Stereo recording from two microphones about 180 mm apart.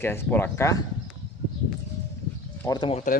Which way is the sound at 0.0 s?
10° left (ahead or behind).